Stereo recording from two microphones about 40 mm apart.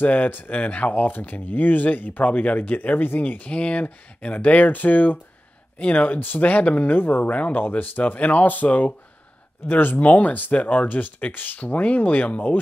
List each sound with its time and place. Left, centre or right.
0.0 s speech: left
3.5 s speech: left
3.8 s speech: left
7.2 s speech: left
7.8 s speech: left
9.7 s speech: left